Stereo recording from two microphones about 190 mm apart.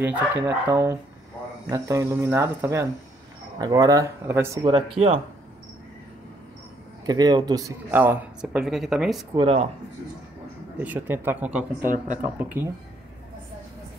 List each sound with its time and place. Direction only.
0.0 s speech: 10° right (ahead or behind)
4.6 s speech: 30° right (ahead or behind)
7.1 s speech: 20° right (ahead or behind); by 9.2 s centre (ahead or behind)
9.3 s speech: 30° right (ahead or behind)
10.8 s speech: 10° right (ahead or behind)